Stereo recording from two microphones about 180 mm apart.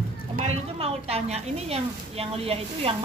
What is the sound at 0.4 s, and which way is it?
A woman's voice, 35° right (ahead or behind).